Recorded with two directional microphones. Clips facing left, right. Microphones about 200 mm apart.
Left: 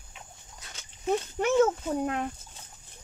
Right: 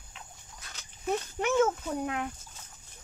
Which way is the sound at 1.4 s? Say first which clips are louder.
Left 3 dB; 35° left (ahead or behind).